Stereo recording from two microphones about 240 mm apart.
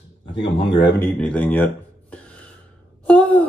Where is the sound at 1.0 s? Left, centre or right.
Centre.